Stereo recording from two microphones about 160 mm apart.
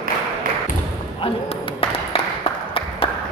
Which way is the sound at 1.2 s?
35° left (ahead or behind).